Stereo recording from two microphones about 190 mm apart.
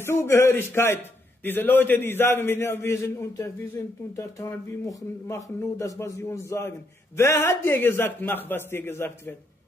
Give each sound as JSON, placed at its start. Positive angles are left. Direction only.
{"t": 0.0, "sound": "a man's voice", "side_deg": 15}